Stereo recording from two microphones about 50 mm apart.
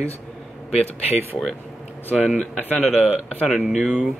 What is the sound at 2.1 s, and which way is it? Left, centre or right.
Speech, centre.